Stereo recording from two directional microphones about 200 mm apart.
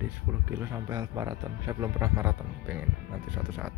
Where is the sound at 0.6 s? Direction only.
15° right (ahead or behind).